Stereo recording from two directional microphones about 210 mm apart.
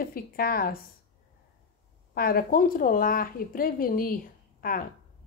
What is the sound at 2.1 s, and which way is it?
Speech, 45° left (ahead or behind).